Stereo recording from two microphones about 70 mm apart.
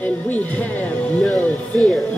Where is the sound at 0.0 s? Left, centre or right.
Left.